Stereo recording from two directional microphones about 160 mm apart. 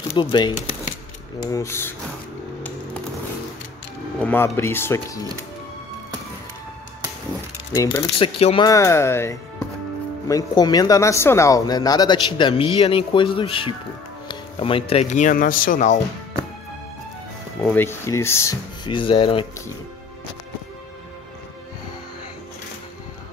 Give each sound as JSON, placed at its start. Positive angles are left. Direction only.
{"t": 0.2, "sound": "speech", "side_deg": 30}
{"t": 4.2, "sound": "speech", "side_deg": 10}
{"t": 7.7, "sound": "speech", "side_deg": 20}
{"t": 8.2, "sound": "speech", "side_deg": 35}
{"t": 8.6, "sound": "speech", "side_deg": 20}
{"t": 17.6, "sound": "speech", "side_deg": 15}
{"t": 18.9, "sound": "speech", "side_deg": 30}